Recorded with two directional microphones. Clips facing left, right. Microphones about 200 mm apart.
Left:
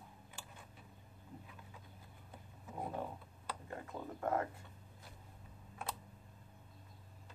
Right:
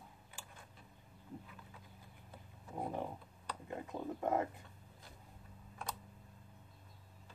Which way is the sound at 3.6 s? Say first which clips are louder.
Right 5 dB; 20° right (ahead or behind).